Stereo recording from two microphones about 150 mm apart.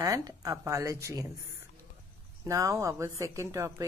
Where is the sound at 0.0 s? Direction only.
20° right (ahead or behind).